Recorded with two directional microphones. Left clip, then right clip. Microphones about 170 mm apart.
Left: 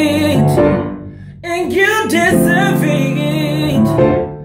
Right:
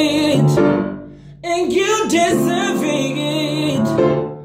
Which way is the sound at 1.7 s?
20° right (ahead or behind).